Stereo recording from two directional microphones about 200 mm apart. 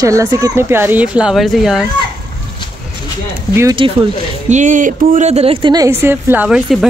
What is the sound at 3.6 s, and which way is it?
Speech, 15° right (ahead or behind).